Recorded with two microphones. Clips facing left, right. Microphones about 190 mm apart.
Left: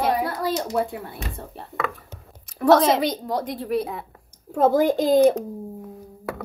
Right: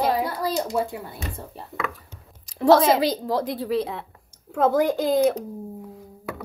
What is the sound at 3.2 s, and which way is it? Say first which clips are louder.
Speech: right 2 dB; 35° right (ahead or behind).